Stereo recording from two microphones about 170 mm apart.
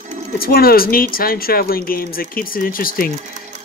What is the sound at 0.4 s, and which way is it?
Speech, 60° left (ahead or behind).